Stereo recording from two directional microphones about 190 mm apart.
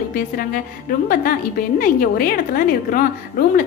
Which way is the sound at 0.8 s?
50° left (ahead or behind).